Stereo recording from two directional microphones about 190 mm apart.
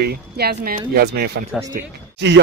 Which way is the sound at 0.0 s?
55° right (ahead or behind).